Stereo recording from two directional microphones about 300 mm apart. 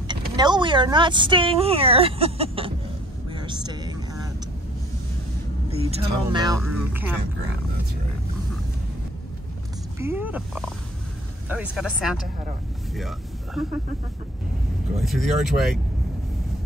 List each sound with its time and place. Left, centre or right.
0.4 s speech: centre
3.3 s vehicle: centre
5.7 s speech: centre
9.9 s speech: centre
13.6 s speech: centre
15.0 s speech: centre